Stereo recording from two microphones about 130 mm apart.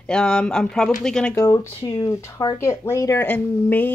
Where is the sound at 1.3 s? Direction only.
25° left (ahead or behind).